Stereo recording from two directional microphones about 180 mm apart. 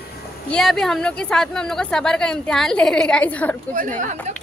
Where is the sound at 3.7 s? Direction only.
45° right (ahead or behind).